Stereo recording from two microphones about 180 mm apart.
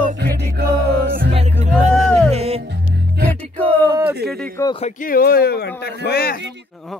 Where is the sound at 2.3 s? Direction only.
35° right (ahead or behind).